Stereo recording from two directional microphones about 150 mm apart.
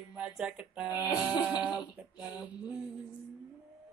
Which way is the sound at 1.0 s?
30° left (ahead or behind).